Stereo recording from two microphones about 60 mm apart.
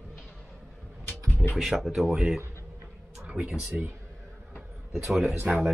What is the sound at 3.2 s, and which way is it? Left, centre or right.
Speech, right.